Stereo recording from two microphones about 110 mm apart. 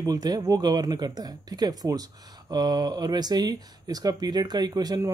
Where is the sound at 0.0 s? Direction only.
35° right (ahead or behind).